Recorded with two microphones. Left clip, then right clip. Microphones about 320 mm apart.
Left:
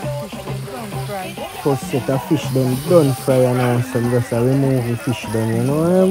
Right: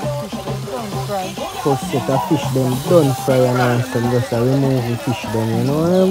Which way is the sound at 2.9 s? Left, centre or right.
Centre.